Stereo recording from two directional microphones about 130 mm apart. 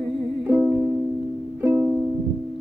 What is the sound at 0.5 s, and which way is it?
Music, 15° right (ahead or behind).